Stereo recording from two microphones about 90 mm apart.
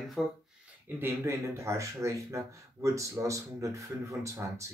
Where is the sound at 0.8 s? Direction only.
25° right (ahead or behind).